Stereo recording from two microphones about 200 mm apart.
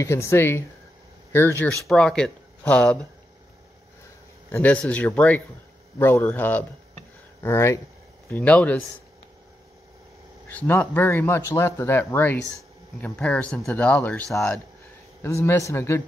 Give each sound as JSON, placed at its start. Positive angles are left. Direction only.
{"t": 0.0, "sound": "speech", "side_deg": 15}
{"t": 4.5, "sound": "speech", "side_deg": 10}
{"t": 10.5, "sound": "speech", "side_deg": 10}
{"t": 15.2, "sound": "speech", "side_deg": 15}